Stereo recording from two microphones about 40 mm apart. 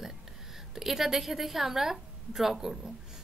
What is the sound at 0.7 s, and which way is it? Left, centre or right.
A woman's voice, centre.